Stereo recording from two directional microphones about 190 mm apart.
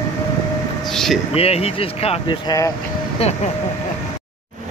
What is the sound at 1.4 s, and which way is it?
Speech, 30° left (ahead or behind).